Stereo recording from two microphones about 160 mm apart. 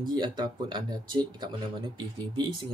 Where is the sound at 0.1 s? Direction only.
30° right (ahead or behind).